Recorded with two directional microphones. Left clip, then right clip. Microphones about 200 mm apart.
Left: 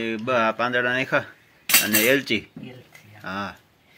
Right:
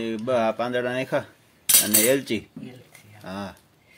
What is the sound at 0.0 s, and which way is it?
Speech, 15° right (ahead or behind).